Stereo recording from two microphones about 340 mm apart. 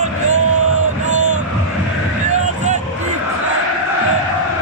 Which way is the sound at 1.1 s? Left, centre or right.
Right.